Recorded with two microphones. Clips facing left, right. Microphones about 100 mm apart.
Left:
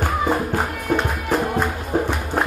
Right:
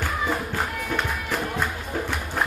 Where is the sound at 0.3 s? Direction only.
35° left (ahead or behind).